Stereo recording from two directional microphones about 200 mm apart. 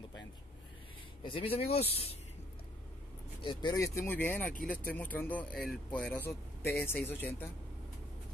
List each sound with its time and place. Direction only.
1.2 s speech: 25° left (ahead or behind)
3.4 s speech: 20° left (ahead or behind)